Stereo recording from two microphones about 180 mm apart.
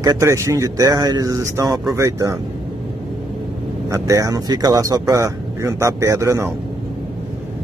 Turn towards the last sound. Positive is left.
turn(degrees=-15)  # may be behind; listen again after turning